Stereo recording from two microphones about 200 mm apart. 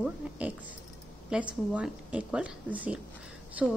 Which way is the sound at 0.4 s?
10° right (ahead or behind).